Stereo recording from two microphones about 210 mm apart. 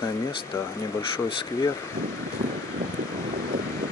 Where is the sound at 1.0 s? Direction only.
25° left (ahead or behind).